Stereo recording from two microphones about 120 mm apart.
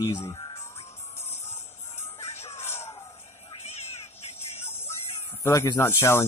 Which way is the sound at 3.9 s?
65° left (ahead or behind).